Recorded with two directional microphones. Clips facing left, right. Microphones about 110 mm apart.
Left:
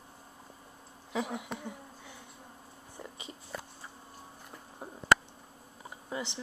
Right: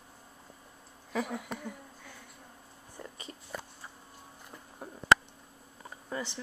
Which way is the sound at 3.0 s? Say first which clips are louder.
Even; 15° left (ahead or behind).